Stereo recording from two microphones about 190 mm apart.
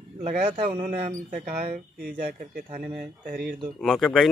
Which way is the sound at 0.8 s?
45° right (ahead or behind).